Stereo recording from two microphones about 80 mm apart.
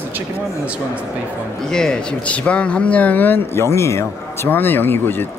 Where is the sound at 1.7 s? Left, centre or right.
Centre; by 5.3 s left.